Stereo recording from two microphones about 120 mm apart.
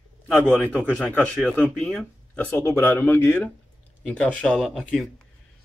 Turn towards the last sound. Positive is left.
turn(degrees=5)  # may be behind; listen again after turning